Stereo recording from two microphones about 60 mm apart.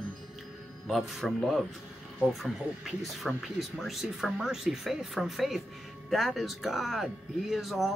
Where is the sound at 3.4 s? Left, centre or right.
Centre.